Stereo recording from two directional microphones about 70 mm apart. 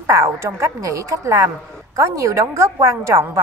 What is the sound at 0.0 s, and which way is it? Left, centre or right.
A woman's voice, right.